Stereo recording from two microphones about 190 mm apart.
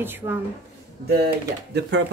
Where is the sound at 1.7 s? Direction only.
60° right (ahead or behind).